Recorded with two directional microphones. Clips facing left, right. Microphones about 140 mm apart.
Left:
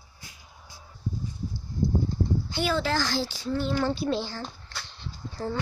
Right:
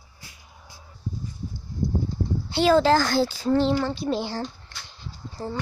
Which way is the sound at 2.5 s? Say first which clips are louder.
Right 12 dB; 80° right.